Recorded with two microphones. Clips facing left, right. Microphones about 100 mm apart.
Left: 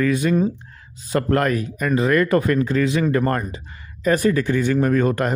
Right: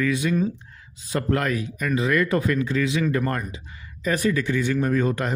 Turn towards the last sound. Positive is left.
turn(degrees=55)  # may be behind; listen again after turning